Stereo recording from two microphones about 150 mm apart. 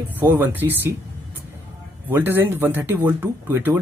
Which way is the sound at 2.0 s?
15° right (ahead or behind).